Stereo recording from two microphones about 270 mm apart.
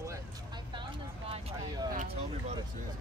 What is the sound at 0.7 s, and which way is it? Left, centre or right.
Vehicle, centre.